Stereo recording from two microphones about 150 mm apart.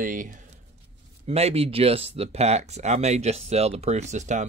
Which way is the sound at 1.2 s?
40° right (ahead or behind).